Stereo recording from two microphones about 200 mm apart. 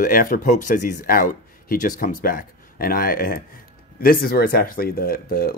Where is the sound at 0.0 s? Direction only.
45° left (ahead or behind).